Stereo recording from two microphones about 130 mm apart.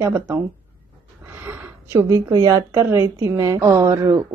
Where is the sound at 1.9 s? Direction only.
25° right (ahead or behind).